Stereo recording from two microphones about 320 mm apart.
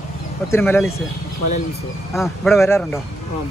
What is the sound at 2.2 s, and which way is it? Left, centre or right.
Speech, centre.